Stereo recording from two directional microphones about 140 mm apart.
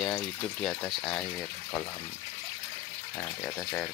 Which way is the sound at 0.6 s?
5° left (ahead or behind).